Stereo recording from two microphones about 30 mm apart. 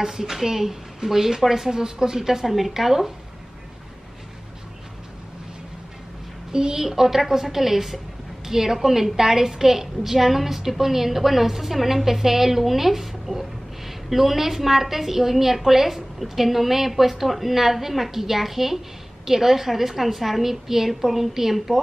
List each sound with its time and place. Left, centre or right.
0.0 s a woman's voice: centre
6.5 s a woman's voice: right